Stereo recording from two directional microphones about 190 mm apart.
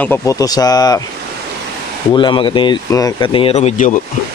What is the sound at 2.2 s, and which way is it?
Speech, 25° left (ahead or behind).